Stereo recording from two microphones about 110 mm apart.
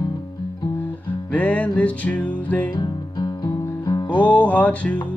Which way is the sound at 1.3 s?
15° left (ahead or behind).